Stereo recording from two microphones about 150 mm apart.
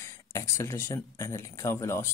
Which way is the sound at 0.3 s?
20° left (ahead or behind).